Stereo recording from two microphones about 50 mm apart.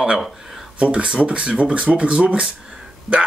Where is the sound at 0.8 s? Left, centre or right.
Right.